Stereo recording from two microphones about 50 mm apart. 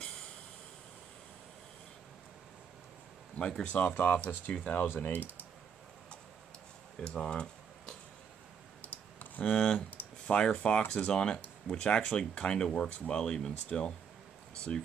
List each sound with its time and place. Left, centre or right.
3.3 s speech: centre
3.7 s speech: left
4.8 s speech: left
7.0 s speech: centre
8.8 s clicking: left
9.4 s speech: centre